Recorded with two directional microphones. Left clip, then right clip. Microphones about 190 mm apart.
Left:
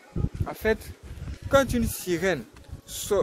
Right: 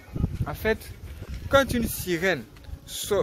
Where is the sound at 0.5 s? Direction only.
10° left (ahead or behind).